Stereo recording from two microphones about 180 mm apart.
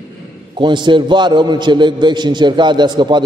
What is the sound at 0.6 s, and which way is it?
A man's voice, 25° right (ahead or behind).